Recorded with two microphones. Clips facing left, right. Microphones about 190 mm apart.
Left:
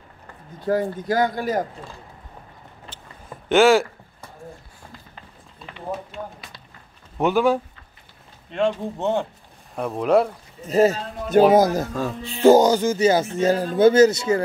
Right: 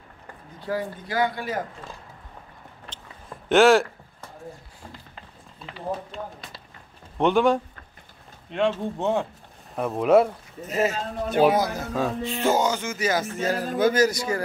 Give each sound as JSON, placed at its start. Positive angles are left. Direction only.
{"t": 0.7, "sound": "speech", "side_deg": 45}
{"t": 2.9, "sound": "a sound", "side_deg": 0}
{"t": 5.9, "sound": "speech", "side_deg": 5}
{"t": 10.7, "sound": "speech", "side_deg": 35}
{"t": 11.9, "sound": "speech", "side_deg": 0}
{"t": 12.4, "sound": "speech", "side_deg": 35}